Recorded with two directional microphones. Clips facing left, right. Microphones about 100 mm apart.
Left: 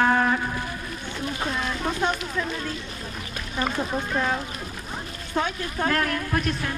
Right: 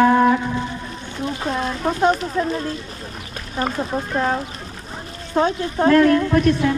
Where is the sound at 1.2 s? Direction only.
35° right (ahead or behind).